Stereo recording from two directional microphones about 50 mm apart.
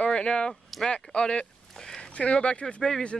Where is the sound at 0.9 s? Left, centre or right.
Centre.